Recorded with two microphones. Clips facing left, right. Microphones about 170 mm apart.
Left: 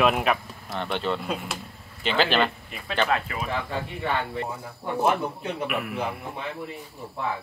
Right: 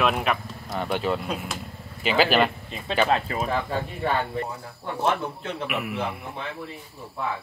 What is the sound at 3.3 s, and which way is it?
Speech, 35° right (ahead or behind).